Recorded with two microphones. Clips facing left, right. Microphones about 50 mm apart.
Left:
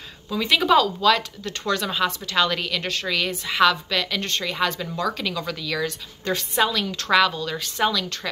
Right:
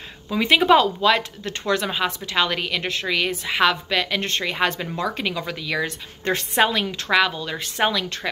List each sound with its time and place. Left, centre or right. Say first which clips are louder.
0.3 s speech: right 3 dB; right
7.1 s speech: left 1 dB; centre
7.5 s speech: right 1 dB; right